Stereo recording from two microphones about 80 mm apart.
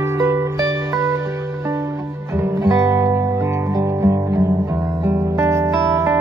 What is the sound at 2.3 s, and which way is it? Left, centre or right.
Music, right.